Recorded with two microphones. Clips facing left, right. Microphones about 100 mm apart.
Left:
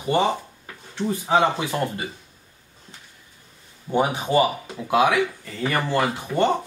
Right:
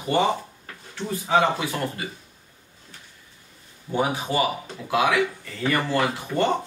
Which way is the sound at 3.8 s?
25° left (ahead or behind).